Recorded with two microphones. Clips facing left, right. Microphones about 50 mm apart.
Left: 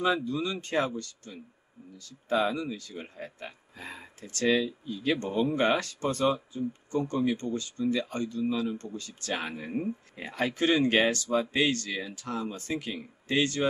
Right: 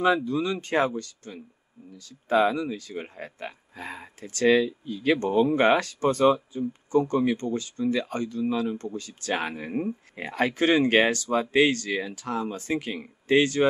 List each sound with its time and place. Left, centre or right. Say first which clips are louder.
0.0 s speech: right 5 dB; right
2.6 s speech: right 5 dB; right
5.2 s speech: right 6 dB; right
7.1 s speech: right 4 dB; right